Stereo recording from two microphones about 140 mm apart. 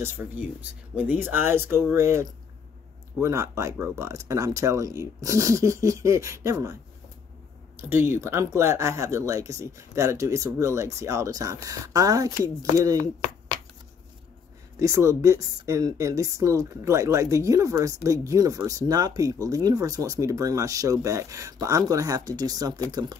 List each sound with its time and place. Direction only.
0.0 s speech: 15° right (ahead or behind)
14.8 s speech: 20° right (ahead or behind)